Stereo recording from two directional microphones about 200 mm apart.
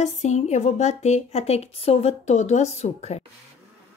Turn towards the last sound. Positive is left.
turn(degrees=35)  # may be behind; listen again after turning